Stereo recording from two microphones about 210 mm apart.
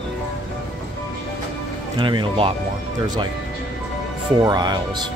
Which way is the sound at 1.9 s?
25° right (ahead or behind).